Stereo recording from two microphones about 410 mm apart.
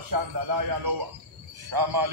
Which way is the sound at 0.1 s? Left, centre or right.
Right.